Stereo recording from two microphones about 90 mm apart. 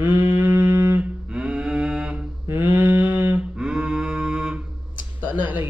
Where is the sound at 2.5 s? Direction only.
25° right (ahead or behind).